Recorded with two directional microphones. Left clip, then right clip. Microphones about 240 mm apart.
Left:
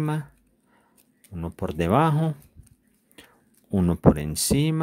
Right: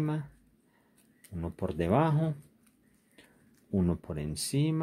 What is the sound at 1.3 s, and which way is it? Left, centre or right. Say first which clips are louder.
Speech: left 5 dB; left.